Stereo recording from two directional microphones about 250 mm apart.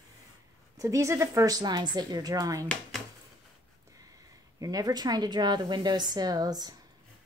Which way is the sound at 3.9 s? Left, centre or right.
Centre.